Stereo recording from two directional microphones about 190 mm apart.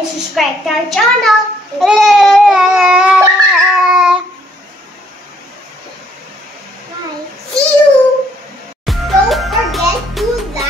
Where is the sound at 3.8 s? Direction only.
5° right (ahead or behind).